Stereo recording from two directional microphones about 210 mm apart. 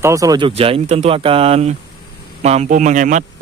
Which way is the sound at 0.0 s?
15° right (ahead or behind).